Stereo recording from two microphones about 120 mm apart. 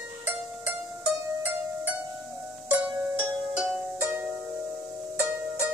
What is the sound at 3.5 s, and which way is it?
Music, 15° right (ahead or behind).